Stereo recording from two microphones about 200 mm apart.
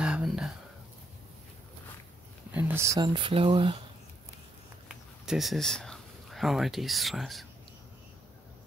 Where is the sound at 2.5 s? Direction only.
10° right (ahead or behind).